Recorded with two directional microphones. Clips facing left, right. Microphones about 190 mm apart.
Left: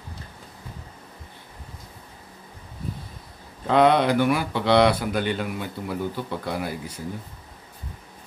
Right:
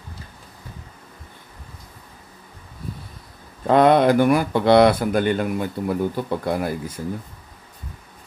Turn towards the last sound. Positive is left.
turn(degrees=-50)  # may be behind; listen again after turning